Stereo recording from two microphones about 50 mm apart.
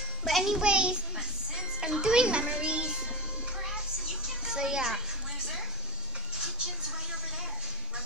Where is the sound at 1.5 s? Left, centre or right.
Centre.